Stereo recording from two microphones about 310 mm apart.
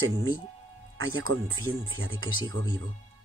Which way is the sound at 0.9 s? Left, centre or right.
Right.